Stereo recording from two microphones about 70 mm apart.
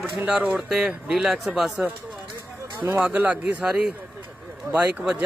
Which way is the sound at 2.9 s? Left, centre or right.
Right.